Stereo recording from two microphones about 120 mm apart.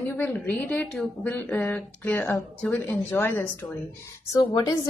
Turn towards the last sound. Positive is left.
turn(degrees=30)  # may be behind; listen again after turning